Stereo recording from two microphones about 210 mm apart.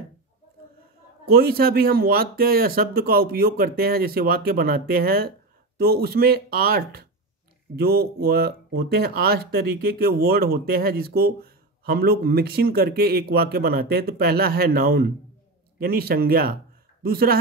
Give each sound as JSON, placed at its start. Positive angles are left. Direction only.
{"t": 1.2, "sound": "speech", "side_deg": -45}